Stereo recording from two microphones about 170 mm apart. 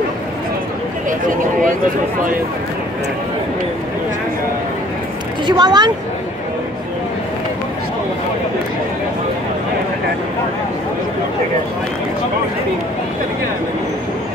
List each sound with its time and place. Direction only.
5.6 s speech: 25° right (ahead or behind)